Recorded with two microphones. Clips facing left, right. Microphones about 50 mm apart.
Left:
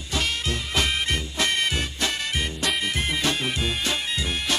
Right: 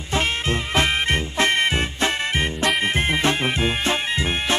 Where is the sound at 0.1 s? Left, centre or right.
Right.